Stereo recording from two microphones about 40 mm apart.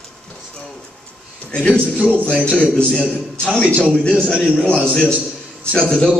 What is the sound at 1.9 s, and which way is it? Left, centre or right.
Music, right.